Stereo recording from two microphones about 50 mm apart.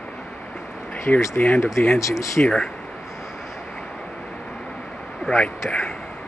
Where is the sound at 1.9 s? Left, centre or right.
Left.